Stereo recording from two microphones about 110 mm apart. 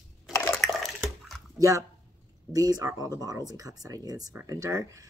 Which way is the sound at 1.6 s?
30° right (ahead or behind).